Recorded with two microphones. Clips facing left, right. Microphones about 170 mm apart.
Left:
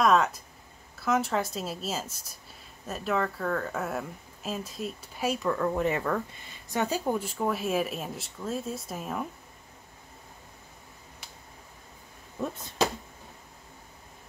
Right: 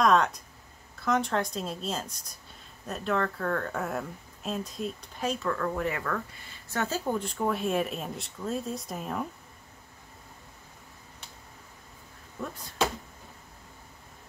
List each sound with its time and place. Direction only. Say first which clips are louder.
0.0 s speech: even; 5° left (ahead or behind)
12.4 s speech: left 4 dB; 25° left (ahead or behind)